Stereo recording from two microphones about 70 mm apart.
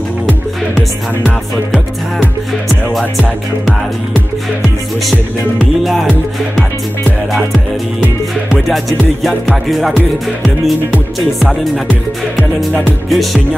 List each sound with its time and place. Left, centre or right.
2.9 s music: centre
7.5 s music: centre
8.5 s music: centre
9.9 s music: centre
11.1 s music: centre
13.1 s music: centre